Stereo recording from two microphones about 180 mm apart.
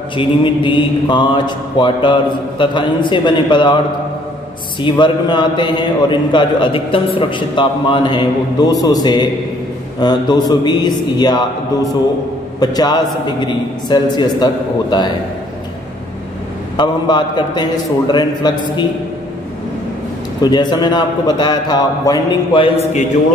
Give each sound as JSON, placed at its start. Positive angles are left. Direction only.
{"t": 0.1, "sound": "a man's voice", "side_deg": 25}
{"t": 4.8, "sound": "a man's voice", "side_deg": 25}
{"t": 16.7, "sound": "a man's voice", "side_deg": 25}
{"t": 20.4, "sound": "a man's voice", "side_deg": 25}